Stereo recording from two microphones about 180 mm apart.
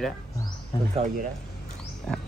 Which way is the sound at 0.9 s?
30° right (ahead or behind).